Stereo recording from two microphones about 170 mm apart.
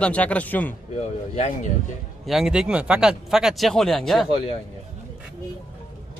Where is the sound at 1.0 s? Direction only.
40° left (ahead or behind).